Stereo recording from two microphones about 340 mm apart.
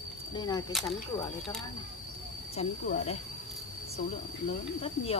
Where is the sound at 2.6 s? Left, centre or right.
Centre.